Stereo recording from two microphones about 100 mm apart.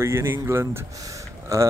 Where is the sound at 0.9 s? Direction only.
35° right (ahead or behind).